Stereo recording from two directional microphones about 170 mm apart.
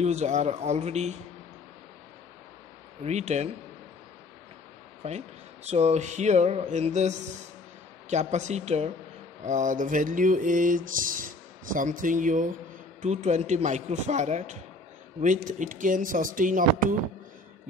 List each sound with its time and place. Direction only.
0.0 s speech: 40° right (ahead or behind)
3.0 s speech: 40° right (ahead or behind)
5.0 s speech: 40° right (ahead or behind)